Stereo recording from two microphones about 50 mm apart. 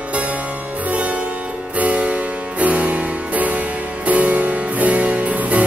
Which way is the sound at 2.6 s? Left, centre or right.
Right.